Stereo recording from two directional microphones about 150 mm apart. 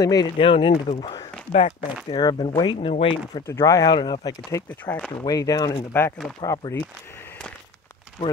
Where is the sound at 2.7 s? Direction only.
40° left (ahead or behind).